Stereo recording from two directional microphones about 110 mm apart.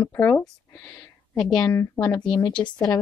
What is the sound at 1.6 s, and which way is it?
Speech, 25° left (ahead or behind).